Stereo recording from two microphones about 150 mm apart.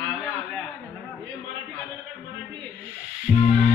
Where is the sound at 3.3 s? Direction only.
20° left (ahead or behind).